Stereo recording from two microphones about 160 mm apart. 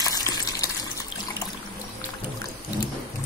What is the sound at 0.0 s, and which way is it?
Gush, 25° left (ahead or behind).